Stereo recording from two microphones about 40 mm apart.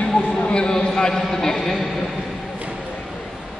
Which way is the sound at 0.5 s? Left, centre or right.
Left.